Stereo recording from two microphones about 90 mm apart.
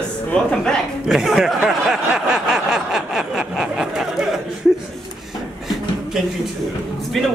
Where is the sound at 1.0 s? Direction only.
5° right (ahead or behind).